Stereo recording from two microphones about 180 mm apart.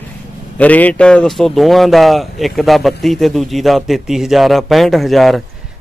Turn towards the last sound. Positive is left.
turn(degrees=0)  # may be behind; listen again after turning